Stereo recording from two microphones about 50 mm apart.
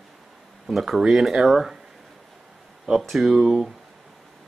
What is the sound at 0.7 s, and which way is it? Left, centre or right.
Speech, centre.